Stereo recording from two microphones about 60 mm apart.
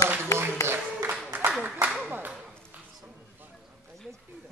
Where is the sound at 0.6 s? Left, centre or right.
Right.